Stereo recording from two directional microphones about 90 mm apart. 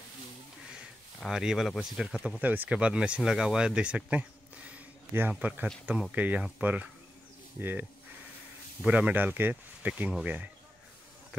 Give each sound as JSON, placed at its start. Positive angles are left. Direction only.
{"t": 1.2, "sound": "speech", "side_deg": -5}
{"t": 8.8, "sound": "speech", "side_deg": -15}